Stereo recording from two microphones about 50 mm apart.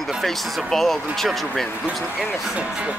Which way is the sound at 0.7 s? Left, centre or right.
Centre.